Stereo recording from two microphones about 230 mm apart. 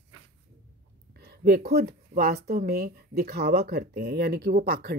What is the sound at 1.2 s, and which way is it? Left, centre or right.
Speech, right.